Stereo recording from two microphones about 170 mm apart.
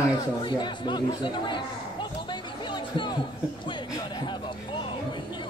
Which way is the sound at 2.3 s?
25° left (ahead or behind).